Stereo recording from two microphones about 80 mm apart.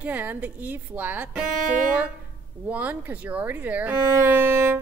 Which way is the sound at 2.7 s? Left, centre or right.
Centre.